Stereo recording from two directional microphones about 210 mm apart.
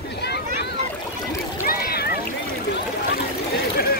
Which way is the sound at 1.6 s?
45° left (ahead or behind).